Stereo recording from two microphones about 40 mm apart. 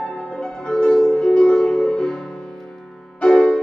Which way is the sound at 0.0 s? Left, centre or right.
Left.